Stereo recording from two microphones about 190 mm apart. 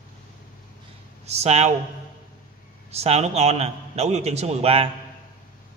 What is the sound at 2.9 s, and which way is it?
A man's voice, 35° right (ahead or behind).